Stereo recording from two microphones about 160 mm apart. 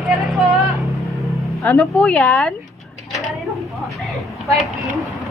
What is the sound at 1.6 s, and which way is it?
Speech, 15° left (ahead or behind).